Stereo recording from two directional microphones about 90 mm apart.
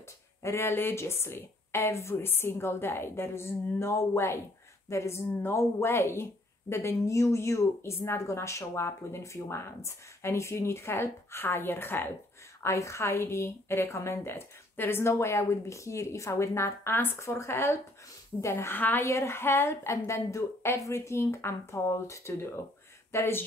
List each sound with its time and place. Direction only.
0.4 s a woman's voice: 30° left (ahead or behind)